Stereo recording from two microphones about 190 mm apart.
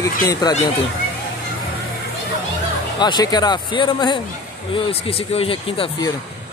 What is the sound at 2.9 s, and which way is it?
Speech, 20° left (ahead or behind).